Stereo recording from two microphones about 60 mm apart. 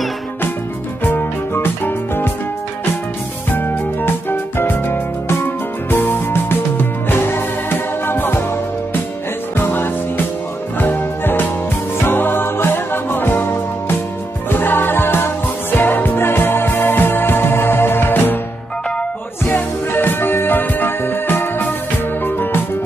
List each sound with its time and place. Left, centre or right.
1.0 s music: left
3.5 s music: left
9.6 s music: left
19.4 s music: left